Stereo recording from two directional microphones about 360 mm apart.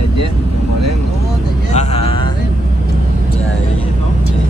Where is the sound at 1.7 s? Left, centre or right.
Centre.